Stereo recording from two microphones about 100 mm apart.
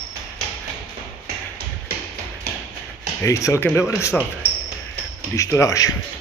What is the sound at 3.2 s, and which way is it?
Speech, 30° left (ahead or behind).